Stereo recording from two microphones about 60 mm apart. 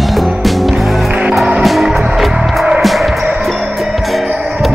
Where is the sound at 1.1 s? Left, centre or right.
Right.